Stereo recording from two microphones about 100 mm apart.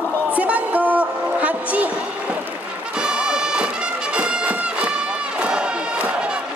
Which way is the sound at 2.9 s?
10° right (ahead or behind).